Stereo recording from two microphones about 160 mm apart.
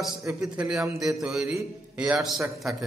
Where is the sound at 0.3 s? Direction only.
5° right (ahead or behind).